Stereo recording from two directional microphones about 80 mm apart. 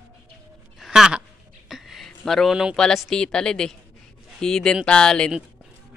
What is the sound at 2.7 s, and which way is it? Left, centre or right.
A woman's voice, centre.